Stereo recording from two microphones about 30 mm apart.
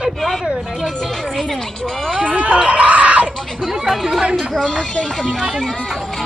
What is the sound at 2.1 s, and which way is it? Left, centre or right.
Speech, right.